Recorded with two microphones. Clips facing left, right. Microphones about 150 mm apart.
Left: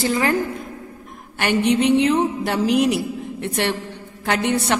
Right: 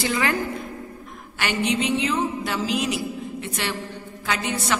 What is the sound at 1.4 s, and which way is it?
A man's voice, 55° left (ahead or behind).